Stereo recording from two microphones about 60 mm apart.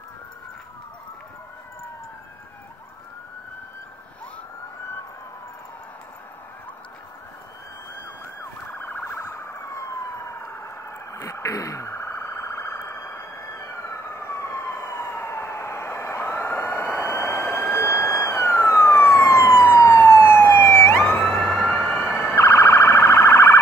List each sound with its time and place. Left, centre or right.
8.7 s car alarm: left
9.0 s police car: left
10.9 s a sound: left
17.7 s vehicle: left
18.1 s police car: left
18.7 s emergency vehicle: left
20.1 s police car: left
21.0 s emergency vehicle: centre
21.8 s siren: centre
22.3 s car alarm: left